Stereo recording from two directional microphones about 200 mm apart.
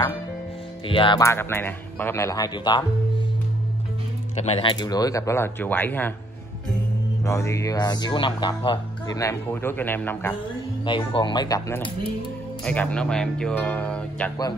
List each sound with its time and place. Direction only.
0.8 s speech: 25° left (ahead or behind)
4.4 s speech: 30° left (ahead or behind); by 6.1 s 10° left (ahead or behind)
7.2 s speech: 15° left (ahead or behind)
10.9 s speech: 25° left (ahead or behind)
12.6 s speech: 5° left (ahead or behind)